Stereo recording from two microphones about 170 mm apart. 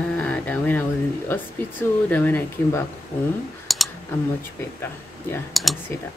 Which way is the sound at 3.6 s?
Centre (ahead or behind).